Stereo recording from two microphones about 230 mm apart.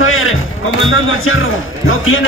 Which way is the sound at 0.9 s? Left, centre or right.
Left.